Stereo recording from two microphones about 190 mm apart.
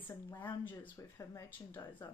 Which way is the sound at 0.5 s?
10° left (ahead or behind).